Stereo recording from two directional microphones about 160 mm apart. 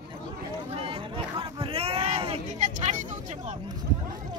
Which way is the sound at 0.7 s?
35° right (ahead or behind).